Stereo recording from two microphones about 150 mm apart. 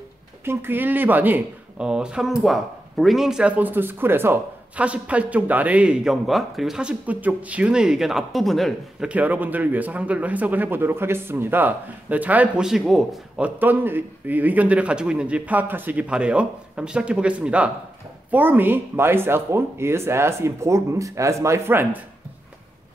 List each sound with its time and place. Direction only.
0.5 s speech: 15° right (ahead or behind); by 9.1 s centre (ahead or behind)
9.1 s speech: 10° right (ahead or behind)
13.6 s speech: 15° right (ahead or behind)